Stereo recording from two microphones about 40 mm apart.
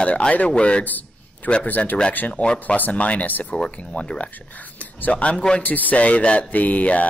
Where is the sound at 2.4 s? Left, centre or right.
Left.